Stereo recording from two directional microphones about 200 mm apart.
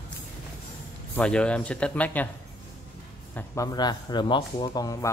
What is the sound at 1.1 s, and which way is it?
Speech, 5° left (ahead or behind).